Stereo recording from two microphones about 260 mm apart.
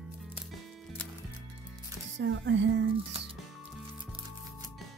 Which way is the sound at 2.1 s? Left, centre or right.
Right.